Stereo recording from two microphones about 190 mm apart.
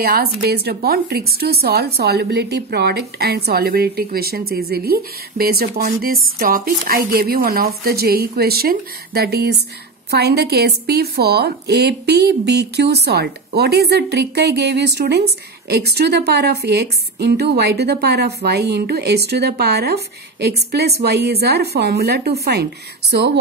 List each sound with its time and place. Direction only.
0.0 s speech: 55° right (ahead or behind)